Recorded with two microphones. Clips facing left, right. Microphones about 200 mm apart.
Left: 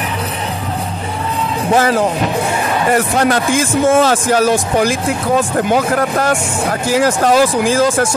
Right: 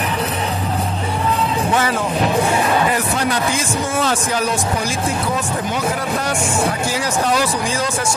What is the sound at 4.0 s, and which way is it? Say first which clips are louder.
Speech: left 7 dB; 75° left (ahead or behind).